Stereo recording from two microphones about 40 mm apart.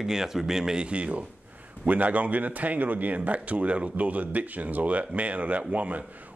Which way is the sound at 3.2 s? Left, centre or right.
Right.